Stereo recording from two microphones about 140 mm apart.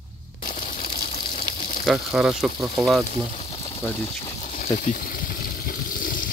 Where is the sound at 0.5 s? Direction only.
70° left (ahead or behind).